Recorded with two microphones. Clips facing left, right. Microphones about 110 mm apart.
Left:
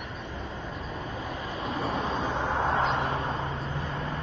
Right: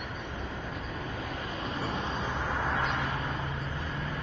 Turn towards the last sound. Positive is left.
turn(degrees=30)  # may be behind; listen again after turning